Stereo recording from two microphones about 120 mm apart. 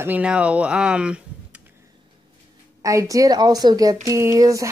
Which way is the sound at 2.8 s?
25° right (ahead or behind).